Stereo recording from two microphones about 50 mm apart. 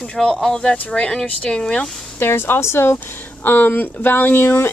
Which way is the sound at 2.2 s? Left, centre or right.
Left.